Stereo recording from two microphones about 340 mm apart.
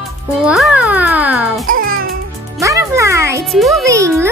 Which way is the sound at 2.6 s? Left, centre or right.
Centre.